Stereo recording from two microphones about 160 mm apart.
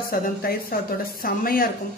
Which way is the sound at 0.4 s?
65° left (ahead or behind).